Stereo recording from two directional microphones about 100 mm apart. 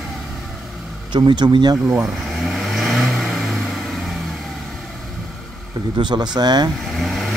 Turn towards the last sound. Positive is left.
turn(degrees=0)  # may be behind; listen again after turning